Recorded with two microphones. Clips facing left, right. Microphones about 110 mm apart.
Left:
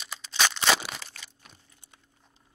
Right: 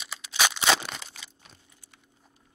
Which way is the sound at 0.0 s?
5° right (ahead or behind).